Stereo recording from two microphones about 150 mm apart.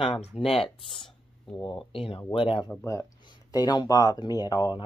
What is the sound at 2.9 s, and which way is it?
Speech, 25° left (ahead or behind).